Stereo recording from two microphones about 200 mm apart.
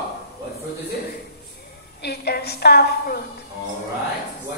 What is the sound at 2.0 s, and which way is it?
A woman's voice, 55° left (ahead or behind).